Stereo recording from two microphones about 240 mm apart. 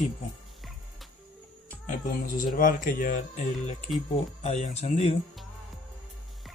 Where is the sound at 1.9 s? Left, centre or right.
Left.